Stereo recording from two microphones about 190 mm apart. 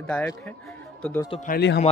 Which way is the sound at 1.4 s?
60° left (ahead or behind).